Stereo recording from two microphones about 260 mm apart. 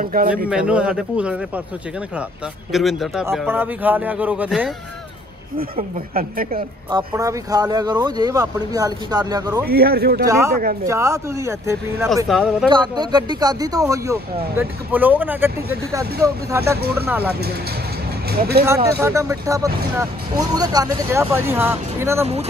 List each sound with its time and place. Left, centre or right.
0.0 s a woman's voice: right
0.5 s a man's voice: centre
2.7 s a man's voice: centre
5.6 s a woman's voice: right
6.9 s speech: centre
9.7 s a woman's voice: right
10.2 s a man's voice: centre
12.6 s speech: centre
17.3 s a woman's voice: right
18.9 s speech: centre